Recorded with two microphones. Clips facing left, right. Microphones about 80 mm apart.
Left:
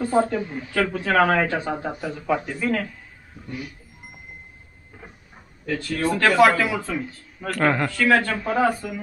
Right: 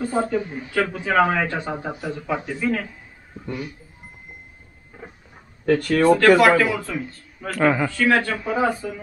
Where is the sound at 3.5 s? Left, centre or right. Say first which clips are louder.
Right 4 dB; right.